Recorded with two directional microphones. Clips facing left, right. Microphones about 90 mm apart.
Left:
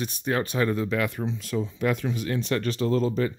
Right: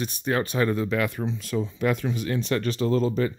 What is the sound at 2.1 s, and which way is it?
Speech, 15° right (ahead or behind).